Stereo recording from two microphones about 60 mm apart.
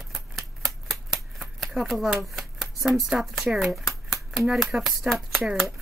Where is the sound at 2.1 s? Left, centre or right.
Centre.